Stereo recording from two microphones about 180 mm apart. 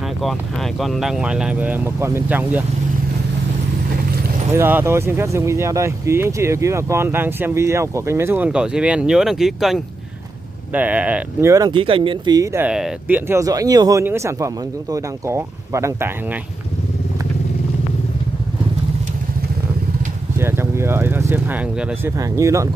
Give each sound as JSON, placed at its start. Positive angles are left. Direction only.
{"t": 0.2, "sound": "speech", "side_deg": 0}
{"t": 4.6, "sound": "speech", "side_deg": -10}
{"t": 11.5, "sound": "speech", "side_deg": -25}
{"t": 12.6, "sound": "speech", "side_deg": -5}
{"t": 13.3, "sound": "speech", "side_deg": -20}
{"t": 20.3, "sound": "speech", "side_deg": -15}